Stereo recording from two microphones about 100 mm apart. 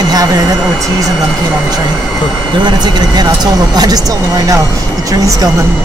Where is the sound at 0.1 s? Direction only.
40° right (ahead or behind).